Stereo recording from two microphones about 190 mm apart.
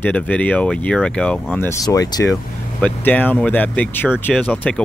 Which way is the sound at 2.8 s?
10° left (ahead or behind).